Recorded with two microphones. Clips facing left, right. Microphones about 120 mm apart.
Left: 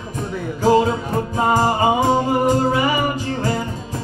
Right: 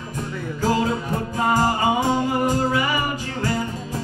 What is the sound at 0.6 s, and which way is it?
Music, 25° left (ahead or behind).